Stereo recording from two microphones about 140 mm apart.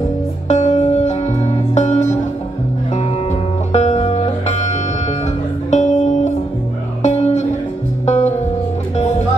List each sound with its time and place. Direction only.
0.5 s music: 55° left (ahead or behind)